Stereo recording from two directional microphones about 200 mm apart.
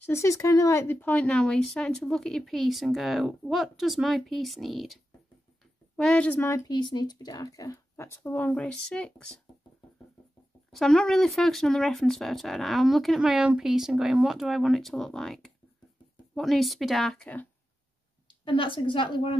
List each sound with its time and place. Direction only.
0.0 s speech: 15° left (ahead or behind)
10.7 s speech: centre (ahead or behind)
18.4 s a woman's voice: 25° left (ahead or behind)